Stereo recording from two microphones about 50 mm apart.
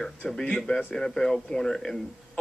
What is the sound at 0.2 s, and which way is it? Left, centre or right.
Speech, centre.